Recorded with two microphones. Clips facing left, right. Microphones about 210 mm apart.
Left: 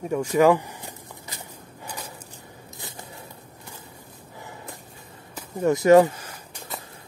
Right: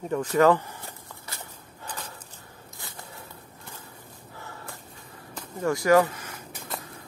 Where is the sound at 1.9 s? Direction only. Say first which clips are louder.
Left 1 dB; 10° left (ahead or behind).